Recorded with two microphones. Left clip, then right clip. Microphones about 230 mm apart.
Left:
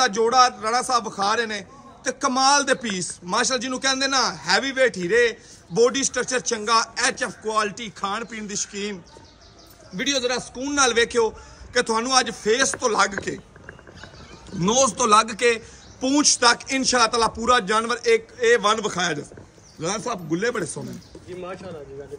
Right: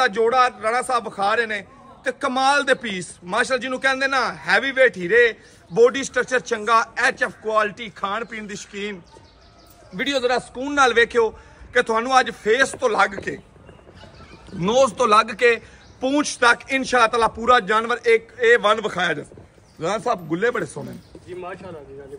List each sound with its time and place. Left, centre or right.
0.0 s a man's voice: centre
14.6 s a man's voice: centre
21.4 s speech: right